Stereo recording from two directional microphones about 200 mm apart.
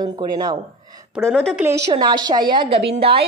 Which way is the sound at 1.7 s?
15° right (ahead or behind).